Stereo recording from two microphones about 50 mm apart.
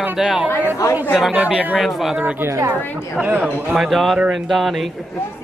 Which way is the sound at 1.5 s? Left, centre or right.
Right.